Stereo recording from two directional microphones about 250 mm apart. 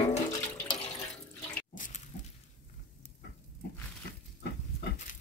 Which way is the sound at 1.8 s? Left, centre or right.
Left.